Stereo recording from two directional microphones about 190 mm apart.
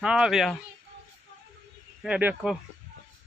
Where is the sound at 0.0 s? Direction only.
5° right (ahead or behind).